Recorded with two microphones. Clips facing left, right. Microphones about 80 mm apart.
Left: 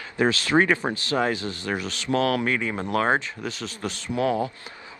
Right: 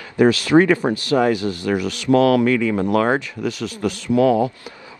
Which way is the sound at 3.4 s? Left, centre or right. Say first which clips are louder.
Right 8 dB; right.